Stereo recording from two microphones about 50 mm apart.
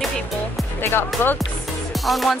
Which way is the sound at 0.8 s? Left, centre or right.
Left.